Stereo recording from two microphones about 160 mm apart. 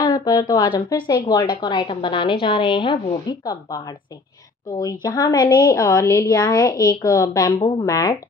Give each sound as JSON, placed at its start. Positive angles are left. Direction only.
{"t": 0.0, "sound": "a woman's voice", "side_deg": 20}